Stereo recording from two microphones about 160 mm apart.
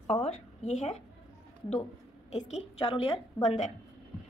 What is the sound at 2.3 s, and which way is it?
Speech, 45° left (ahead or behind).